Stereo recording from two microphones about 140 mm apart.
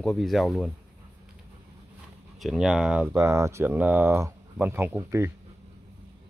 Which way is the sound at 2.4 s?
Centre (ahead or behind).